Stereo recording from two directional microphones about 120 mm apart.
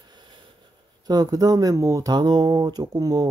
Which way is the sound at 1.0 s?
35° right (ahead or behind).